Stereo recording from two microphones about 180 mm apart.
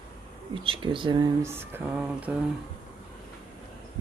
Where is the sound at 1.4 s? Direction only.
10° right (ahead or behind).